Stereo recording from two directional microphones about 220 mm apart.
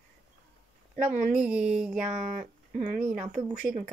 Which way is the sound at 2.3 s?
35° right (ahead or behind).